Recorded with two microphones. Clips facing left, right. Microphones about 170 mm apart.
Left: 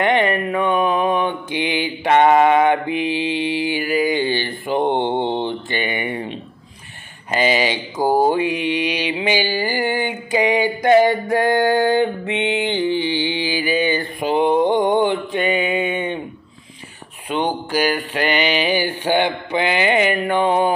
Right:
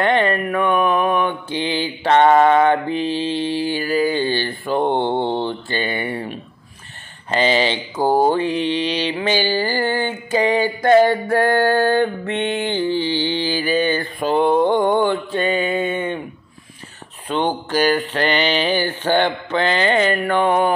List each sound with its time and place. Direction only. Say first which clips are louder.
0.0 s mantra: even; 15° left (ahead or behind)
17.3 s mantra: right 1 dB; 10° left (ahead or behind)